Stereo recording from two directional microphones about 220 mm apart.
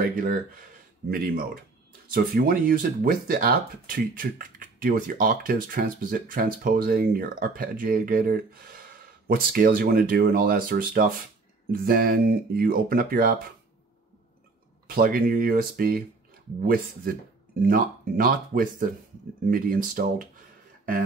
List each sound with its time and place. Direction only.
0.0 s speech: 40° right (ahead or behind)
15.0 s speech: 40° right (ahead or behind)